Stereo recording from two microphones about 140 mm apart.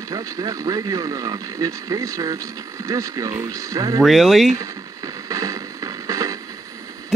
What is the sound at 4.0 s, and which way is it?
Speech, centre (ahead or behind).